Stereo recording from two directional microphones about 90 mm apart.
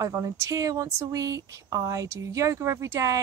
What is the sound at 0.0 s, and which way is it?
Speech, 35° right (ahead or behind).